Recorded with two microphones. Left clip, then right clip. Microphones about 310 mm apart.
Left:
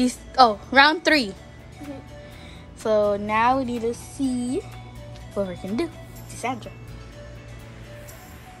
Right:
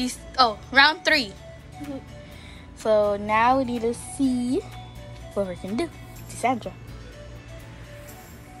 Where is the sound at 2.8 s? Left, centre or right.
Centre.